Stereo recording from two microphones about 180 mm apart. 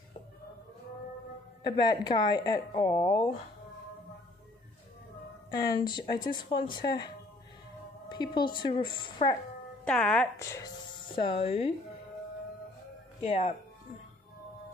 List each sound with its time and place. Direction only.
1.6 s speech: 25° left (ahead or behind)
5.6 s speech: 25° left (ahead or behind)
8.1 s speech: 25° left (ahead or behind)
9.8 s speech: 5° left (ahead or behind)
10.3 s speech: 15° left (ahead or behind)
11.1 s speech: 30° left (ahead or behind)
13.2 s speech: 35° left (ahead or behind)